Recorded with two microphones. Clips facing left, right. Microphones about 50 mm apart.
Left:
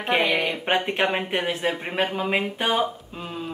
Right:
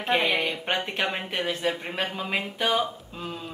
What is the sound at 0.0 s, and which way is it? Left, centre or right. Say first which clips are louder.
Speech: left 2 dB; centre.